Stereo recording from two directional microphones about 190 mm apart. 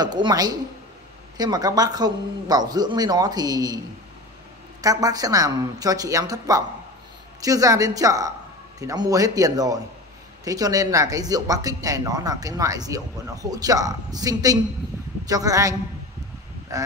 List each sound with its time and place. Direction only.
0.0 s speech: 20° right (ahead or behind)
4.8 s speech: 20° right (ahead or behind)
16.7 s speech: 15° right (ahead or behind)